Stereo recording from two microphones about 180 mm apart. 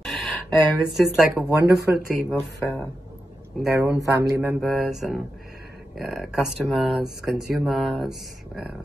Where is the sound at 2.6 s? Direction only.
10° left (ahead or behind).